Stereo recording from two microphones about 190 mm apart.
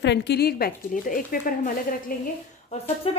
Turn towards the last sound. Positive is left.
turn(degrees=30)  # may be behind; listen again after turning